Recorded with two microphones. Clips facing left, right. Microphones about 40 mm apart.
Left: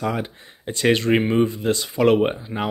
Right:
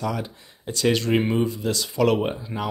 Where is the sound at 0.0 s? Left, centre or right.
Left.